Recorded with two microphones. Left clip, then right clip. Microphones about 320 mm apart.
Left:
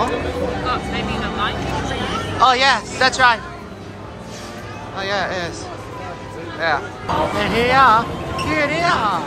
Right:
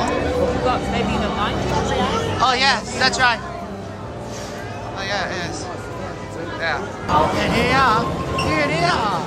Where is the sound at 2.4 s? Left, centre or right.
Centre.